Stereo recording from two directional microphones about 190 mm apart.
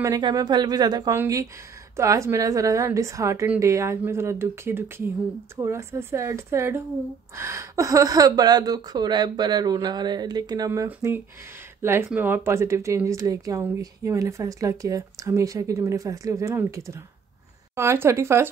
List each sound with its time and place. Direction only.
0.0 s speech: 20° right (ahead or behind)